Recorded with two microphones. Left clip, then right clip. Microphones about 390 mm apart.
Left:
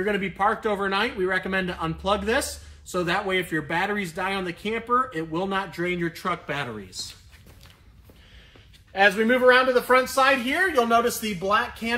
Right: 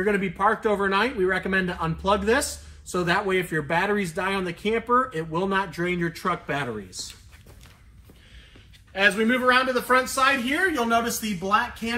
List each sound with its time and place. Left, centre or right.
0.0 s speech: centre
8.9 s speech: left
11.1 s speech: centre